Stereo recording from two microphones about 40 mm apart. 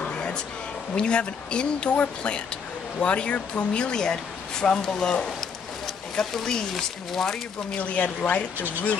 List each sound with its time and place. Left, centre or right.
0.0 s a sound: left
0.9 s speech: left
6.3 s speech: centre
7.7 s speech: left